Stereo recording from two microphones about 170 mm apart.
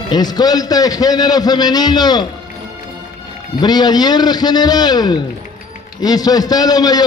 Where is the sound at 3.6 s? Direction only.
25° left (ahead or behind).